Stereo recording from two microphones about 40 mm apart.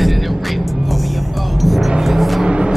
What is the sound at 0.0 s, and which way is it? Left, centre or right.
Music, centre.